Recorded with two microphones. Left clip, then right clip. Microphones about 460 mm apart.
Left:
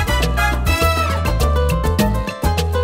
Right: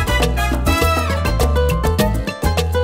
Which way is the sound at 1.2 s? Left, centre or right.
Right.